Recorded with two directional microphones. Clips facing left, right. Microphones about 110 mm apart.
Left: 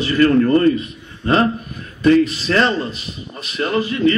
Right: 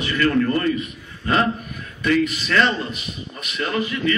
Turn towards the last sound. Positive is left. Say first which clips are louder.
# left 6 dB
turn(degrees=35)  # may be behind; listen again after turning